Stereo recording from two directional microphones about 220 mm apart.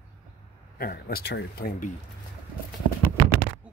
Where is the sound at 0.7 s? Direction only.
40° left (ahead or behind).